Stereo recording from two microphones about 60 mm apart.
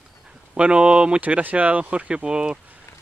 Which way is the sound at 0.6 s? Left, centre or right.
Centre.